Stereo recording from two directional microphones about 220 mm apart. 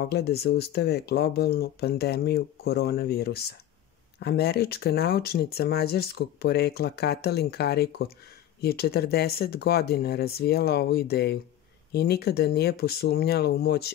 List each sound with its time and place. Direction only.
0.0 s speech: 45° left (ahead or behind)